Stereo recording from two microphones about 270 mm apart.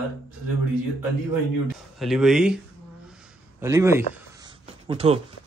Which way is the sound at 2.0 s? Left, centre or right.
Centre.